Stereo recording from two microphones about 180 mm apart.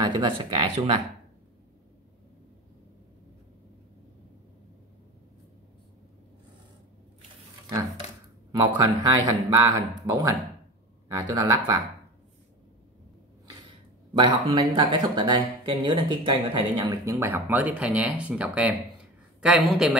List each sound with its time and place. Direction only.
0.0 s speech: 25° right (ahead or behind)
8.5 s speech: 25° right (ahead or behind)
14.1 s speech: 30° right (ahead or behind); by 20.0 s 5° right (ahead or behind)